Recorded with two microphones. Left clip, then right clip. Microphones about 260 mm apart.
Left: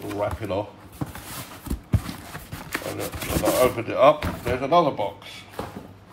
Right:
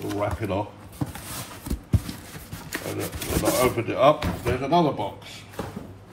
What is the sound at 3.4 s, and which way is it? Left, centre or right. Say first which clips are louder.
Speech: left 2 dB; centre.